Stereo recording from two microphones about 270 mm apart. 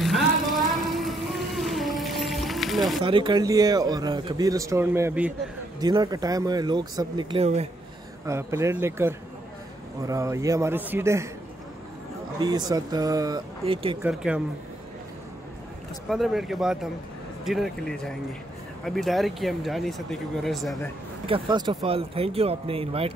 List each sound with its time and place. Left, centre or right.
0.0 s music: centre
3.0 s speech: centre
8.3 s speech: centre
12.4 s speech: centre
14.0 s speech: centre
16.1 s speech: centre
21.3 s speech: centre